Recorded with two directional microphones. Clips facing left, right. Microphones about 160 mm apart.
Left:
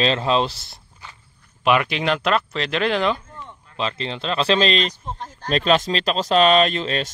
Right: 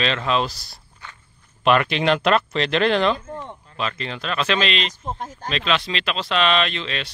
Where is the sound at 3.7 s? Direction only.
25° left (ahead or behind).